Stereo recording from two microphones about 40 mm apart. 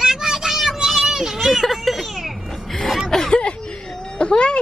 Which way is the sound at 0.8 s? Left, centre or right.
Centre.